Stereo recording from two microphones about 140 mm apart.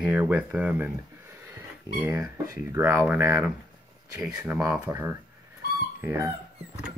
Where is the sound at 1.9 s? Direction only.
20° right (ahead or behind).